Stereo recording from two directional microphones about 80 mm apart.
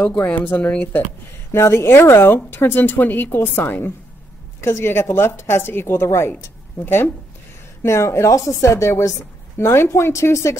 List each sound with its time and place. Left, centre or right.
0.0 s a woman's voice: left
1.5 s a woman's voice: left
7.8 s speech: left